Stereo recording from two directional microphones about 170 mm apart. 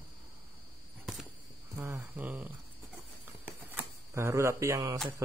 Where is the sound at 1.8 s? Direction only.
10° right (ahead or behind).